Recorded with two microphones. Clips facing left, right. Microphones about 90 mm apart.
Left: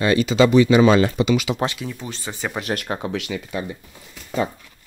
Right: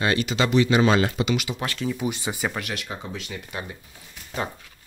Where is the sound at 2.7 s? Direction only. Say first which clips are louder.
Left 7 dB; 50° left (ahead or behind).